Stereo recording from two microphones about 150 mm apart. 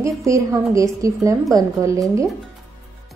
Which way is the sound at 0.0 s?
20° right (ahead or behind).